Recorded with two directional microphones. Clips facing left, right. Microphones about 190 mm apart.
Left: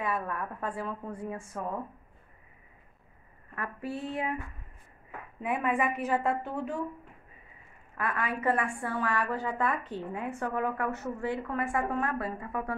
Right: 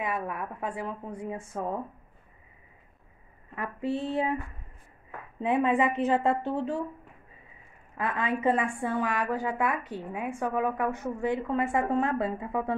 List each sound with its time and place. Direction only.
0.0 s a woman's voice: 15° right (ahead or behind)
3.5 s speech: 20° right (ahead or behind)
5.4 s speech: 25° right (ahead or behind)
8.0 s a woman's voice: 25° right (ahead or behind)